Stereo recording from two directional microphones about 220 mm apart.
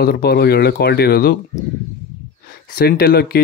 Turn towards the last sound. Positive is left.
turn(degrees=45)  # may be behind; listen again after turning